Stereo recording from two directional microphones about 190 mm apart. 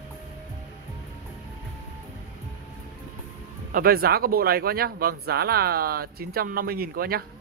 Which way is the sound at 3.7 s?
50° right (ahead or behind).